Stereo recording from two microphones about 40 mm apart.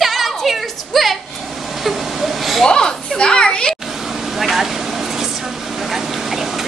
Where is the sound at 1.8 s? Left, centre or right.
Centre.